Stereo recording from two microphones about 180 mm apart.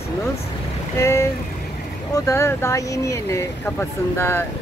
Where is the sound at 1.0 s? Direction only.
15° left (ahead or behind).